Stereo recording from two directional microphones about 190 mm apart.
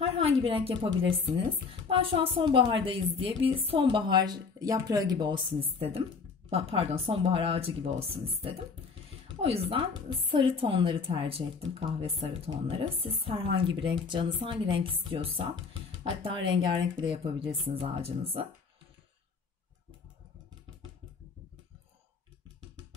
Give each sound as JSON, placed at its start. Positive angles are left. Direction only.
{"t": 0.0, "sound": "a sound", "side_deg": -30}
{"t": 1.2, "sound": "a woman's voice", "side_deg": -30}
{"t": 9.5, "sound": "a woman's voice", "side_deg": -30}